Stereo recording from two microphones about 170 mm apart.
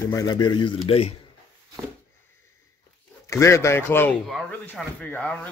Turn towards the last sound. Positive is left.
turn(degrees=10)  # may be behind; listen again after turning